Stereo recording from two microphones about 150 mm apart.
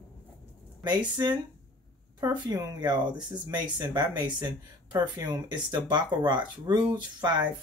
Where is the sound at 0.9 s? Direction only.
30° right (ahead or behind).